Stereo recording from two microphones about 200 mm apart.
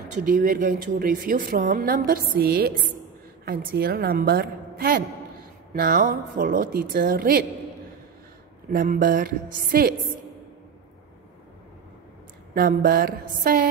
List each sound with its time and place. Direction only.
0.3 s a woman's voice: 45° right (ahead or behind)
8.7 s a woman's voice: 45° right (ahead or behind)
12.5 s a woman's voice: 45° right (ahead or behind)